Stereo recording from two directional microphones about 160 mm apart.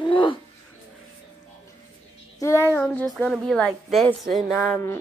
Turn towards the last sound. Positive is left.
turn(degrees=0)  # may be behind; listen again after turning